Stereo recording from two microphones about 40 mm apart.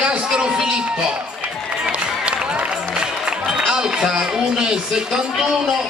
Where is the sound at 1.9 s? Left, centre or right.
Right.